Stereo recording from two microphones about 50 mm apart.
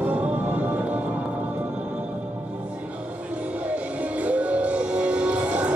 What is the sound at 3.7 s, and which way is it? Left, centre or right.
Music, right.